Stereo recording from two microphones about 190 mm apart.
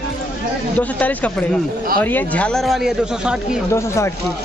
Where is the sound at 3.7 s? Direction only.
15° left (ahead or behind).